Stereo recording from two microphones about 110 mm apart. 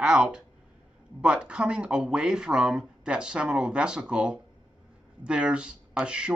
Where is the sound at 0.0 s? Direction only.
5° right (ahead or behind).